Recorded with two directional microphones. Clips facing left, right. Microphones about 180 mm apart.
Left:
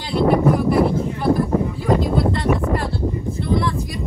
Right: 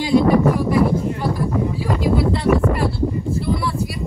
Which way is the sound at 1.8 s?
5° right (ahead or behind).